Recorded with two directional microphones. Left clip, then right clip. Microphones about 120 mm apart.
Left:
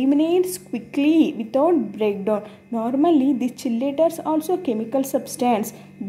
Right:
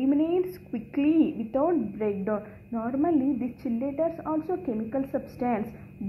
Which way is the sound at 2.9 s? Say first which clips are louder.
Left 7 dB; 60° left (ahead or behind).